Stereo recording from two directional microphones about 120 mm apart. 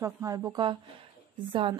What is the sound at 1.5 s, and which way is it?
Speech, 45° right (ahead or behind).